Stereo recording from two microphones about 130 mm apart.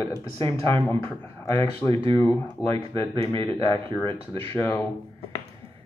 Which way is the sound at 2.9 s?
25° left (ahead or behind).